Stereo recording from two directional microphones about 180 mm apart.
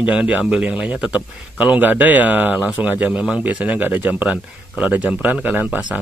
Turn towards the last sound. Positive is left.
turn(degrees=-10)  # may be behind; listen again after turning